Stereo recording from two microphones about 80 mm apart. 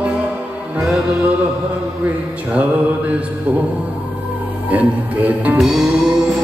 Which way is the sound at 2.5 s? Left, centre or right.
Centre.